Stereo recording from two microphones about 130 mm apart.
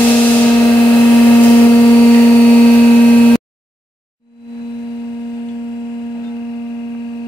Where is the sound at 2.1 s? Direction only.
10° left (ahead or behind).